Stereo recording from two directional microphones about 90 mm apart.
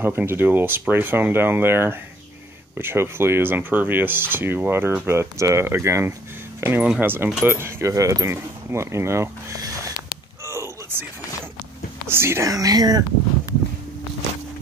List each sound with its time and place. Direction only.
0.0 s speech: 25° right (ahead or behind)
10.4 s a sound: 30° right (ahead or behind)
12.1 s speech: 25° right (ahead or behind); by 13.0 s 45° right (ahead or behind)